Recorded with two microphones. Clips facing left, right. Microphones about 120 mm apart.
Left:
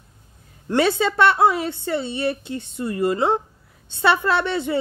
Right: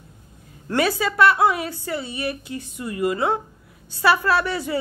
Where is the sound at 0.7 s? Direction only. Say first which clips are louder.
Left 3 dB; 25° left (ahead or behind).